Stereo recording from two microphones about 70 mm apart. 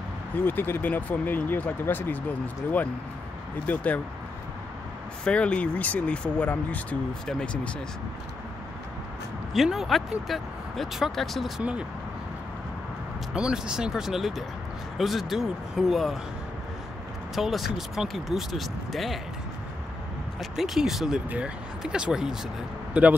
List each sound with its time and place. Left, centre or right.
0.4 s speech: left
5.2 s speech: centre
9.5 s speech: centre
13.3 s speech: centre
17.4 s speech: centre
20.3 s speech: centre
23.0 s speech: right